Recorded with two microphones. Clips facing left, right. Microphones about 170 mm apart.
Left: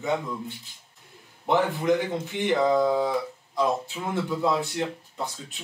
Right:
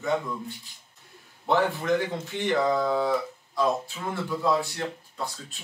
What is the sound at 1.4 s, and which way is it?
Speech, 20° left (ahead or behind).